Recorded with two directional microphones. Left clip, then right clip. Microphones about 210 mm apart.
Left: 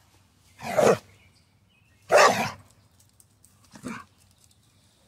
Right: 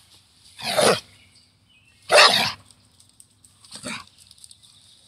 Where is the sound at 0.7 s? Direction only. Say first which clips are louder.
Right 1 dB; 5° right (ahead or behind).